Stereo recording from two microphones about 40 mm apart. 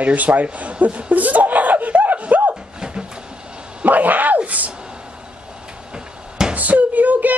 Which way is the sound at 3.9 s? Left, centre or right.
Right.